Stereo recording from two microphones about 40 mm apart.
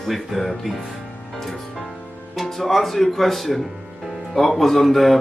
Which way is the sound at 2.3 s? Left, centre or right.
Centre.